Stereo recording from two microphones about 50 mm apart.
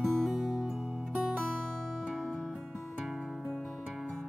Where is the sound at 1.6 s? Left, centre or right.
Centre.